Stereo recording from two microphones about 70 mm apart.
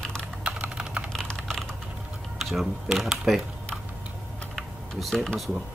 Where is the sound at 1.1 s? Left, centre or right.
Centre.